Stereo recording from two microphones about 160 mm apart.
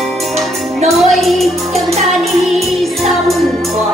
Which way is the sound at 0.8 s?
Centre (ahead or behind).